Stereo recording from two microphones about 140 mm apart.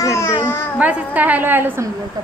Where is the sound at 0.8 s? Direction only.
10° right (ahead or behind).